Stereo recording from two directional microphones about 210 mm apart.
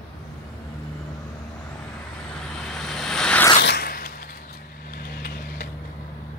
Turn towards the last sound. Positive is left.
turn(degrees=45)  # may be behind; listen again after turning